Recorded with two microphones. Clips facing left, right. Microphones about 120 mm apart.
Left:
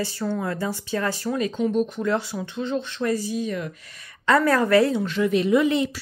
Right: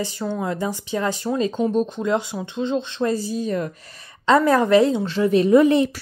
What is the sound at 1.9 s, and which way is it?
Speech, 20° right (ahead or behind).